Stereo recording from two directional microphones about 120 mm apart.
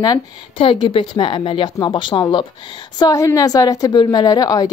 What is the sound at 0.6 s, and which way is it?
A woman's voice, 45° left (ahead or behind).